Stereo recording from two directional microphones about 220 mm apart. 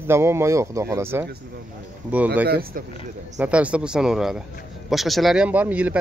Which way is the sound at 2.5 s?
40° right (ahead or behind).